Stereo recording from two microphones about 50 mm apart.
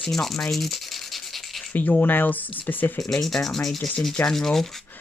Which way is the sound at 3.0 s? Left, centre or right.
Centre.